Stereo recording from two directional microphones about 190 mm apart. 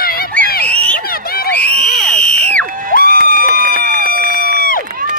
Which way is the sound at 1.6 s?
5° left (ahead or behind).